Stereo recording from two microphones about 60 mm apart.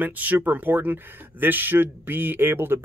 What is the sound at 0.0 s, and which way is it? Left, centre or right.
Speech, right.